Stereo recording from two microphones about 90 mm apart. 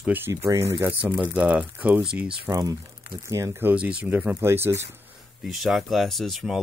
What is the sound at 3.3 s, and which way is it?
Speech, 30° right (ahead or behind).